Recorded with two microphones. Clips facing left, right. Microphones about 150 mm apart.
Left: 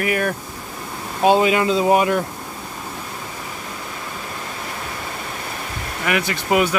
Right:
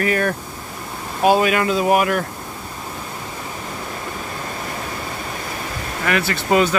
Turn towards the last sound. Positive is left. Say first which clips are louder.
# right 1 dB
turn(degrees=10)  # may be behind; listen again after turning